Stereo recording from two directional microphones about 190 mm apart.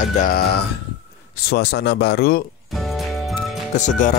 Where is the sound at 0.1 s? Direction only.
40° left (ahead or behind).